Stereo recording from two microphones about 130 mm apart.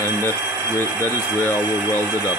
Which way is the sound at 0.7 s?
15° left (ahead or behind).